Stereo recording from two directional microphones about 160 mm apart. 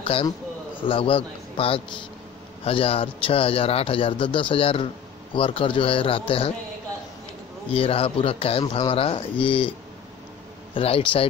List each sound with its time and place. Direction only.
0.0 s speech: 35° left (ahead or behind)
7.7 s speech: 35° left (ahead or behind)
10.7 s speech: 35° left (ahead or behind)